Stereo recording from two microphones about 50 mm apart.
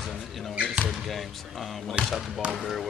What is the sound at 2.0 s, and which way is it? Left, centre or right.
Speech, right.